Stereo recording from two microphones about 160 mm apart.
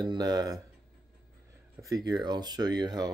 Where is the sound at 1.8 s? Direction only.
25° right (ahead or behind).